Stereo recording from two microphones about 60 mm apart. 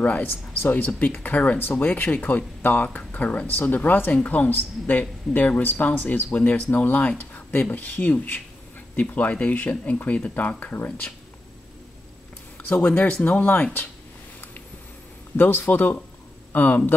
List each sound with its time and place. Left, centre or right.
0.0 s speech: left
12.7 s speech: left
15.3 s speech: left